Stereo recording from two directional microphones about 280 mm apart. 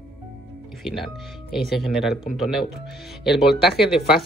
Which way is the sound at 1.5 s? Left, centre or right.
Centre.